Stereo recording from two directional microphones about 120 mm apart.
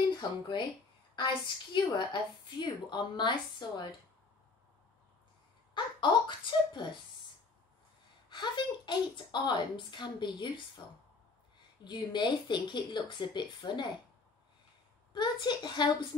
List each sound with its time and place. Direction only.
0.1 s a woman's voice: 40° left (ahead or behind)
5.8 s a woman's voice: 40° left (ahead or behind)
8.3 s a woman's voice: 40° left (ahead or behind)
11.8 s a woman's voice: 40° left (ahead or behind)
15.1 s a woman's voice: 40° left (ahead or behind)